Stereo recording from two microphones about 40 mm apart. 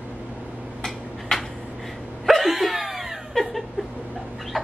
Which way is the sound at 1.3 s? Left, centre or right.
Centre.